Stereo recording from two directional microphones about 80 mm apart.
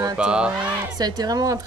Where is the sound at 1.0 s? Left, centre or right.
Right.